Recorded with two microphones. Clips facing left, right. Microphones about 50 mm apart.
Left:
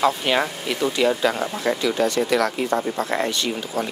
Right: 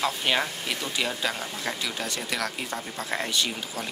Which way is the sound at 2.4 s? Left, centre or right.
Left.